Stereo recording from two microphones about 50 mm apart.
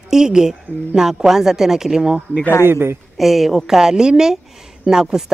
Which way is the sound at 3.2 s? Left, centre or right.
Centre.